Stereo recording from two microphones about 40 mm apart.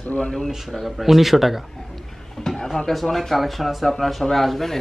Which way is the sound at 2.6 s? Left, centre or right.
Centre.